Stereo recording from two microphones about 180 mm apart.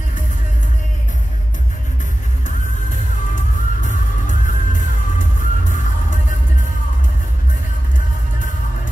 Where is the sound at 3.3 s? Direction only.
45° left (ahead or behind).